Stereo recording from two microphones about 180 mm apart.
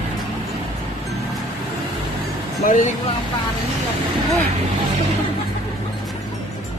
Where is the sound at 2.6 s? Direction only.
45° left (ahead or behind).